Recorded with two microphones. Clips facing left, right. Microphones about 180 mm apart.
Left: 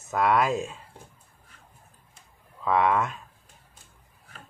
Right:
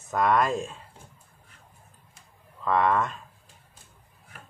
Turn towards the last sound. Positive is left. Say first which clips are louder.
# even
turn(degrees=5)  # may be behind; listen again after turning